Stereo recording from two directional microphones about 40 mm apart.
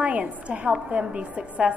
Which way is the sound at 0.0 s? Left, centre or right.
Right.